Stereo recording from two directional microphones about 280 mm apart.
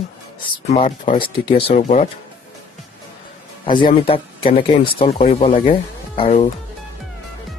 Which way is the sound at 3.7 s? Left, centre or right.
Centre.